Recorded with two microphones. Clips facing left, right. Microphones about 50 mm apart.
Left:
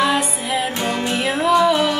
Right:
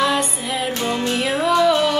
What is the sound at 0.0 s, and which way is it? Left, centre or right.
Music, centre.